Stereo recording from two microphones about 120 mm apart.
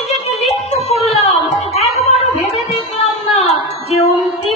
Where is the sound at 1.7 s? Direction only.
60° left (ahead or behind).